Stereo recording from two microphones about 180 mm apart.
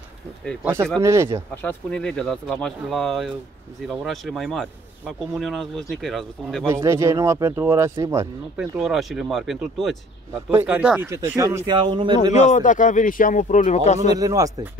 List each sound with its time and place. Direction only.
1.0 s speech: 15° right (ahead or behind)
1.6 s speech: 10° left (ahead or behind)
6.7 s speech: 15° right (ahead or behind)
8.5 s speech: centre (ahead or behind); by 12.2 s 25° right (ahead or behind)
12.3 s a man's voice: 40° left (ahead or behind)
14.1 s speech: 20° right (ahead or behind)